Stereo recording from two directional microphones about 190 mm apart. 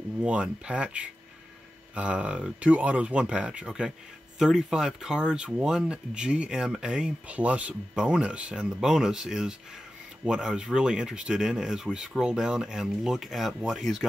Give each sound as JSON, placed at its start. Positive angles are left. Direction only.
{"t": 0.2, "sound": "speech", "side_deg": -5}